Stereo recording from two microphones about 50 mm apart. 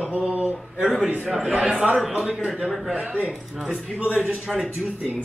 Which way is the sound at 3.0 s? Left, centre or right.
Centre.